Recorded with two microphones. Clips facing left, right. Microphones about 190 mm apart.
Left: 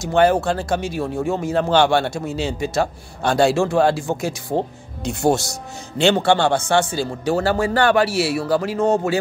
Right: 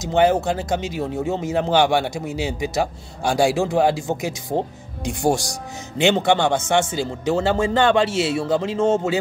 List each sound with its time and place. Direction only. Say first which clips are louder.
0.0 s a man's voice: left 1 dB; 20° right (ahead or behind)